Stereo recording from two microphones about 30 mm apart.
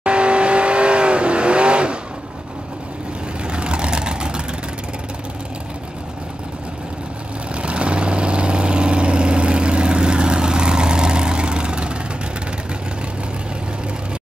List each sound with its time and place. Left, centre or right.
0.0 s vehicle: right
3.4 s vehicle: right
7.6 s vehicle: right